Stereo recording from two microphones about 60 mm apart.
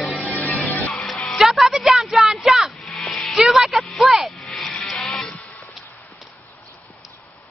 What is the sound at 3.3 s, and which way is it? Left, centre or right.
Vehicle, centre.